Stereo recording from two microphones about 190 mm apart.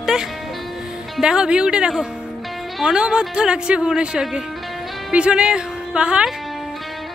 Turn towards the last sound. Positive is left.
turn(degrees=-5)  # may be behind; listen again after turning